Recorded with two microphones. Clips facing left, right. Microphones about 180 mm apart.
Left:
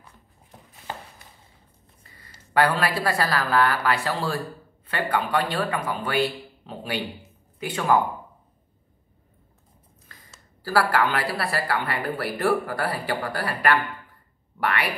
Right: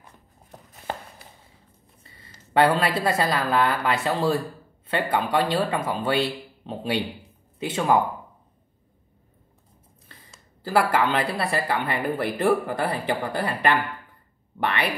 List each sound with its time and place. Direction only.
2.5 s a woman's voice: 25° right (ahead or behind)
10.6 s a woman's voice: 20° right (ahead or behind)